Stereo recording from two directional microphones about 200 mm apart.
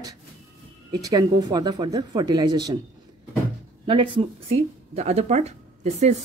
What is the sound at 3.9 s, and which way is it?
Speech, 25° right (ahead or behind).